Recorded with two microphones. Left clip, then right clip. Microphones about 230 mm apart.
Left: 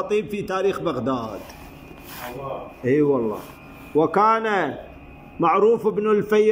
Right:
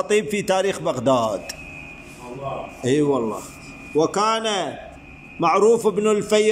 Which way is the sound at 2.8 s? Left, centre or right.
Centre.